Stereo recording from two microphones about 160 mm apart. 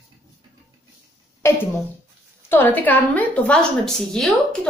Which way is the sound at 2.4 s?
10° left (ahead or behind).